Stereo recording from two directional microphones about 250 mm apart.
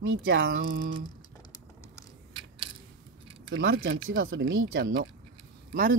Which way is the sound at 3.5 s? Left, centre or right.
Right.